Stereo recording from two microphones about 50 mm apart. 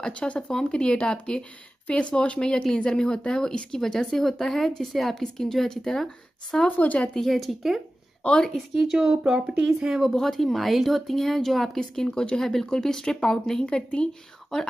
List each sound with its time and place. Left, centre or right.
0.0 s speech: centre
6.8 s speech: left
7.2 s speech: centre
8.8 s speech: centre
10.1 s speech: centre